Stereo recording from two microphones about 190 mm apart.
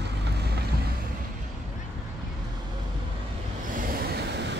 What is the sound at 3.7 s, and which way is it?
Train, 50° right (ahead or behind).